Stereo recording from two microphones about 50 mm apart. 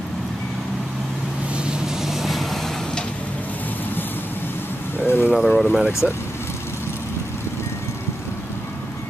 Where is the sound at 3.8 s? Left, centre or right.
Left.